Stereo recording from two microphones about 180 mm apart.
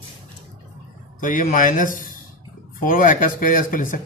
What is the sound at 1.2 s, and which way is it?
A man's voice, 45° left (ahead or behind).